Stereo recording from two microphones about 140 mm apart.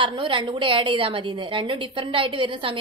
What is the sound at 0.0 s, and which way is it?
A woman's voice, 35° right (ahead or behind).